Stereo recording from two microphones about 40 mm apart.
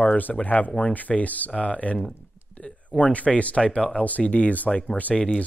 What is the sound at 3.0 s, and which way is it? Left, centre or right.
Speech, left.